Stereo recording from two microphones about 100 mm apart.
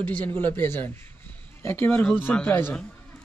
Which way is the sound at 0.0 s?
15° left (ahead or behind).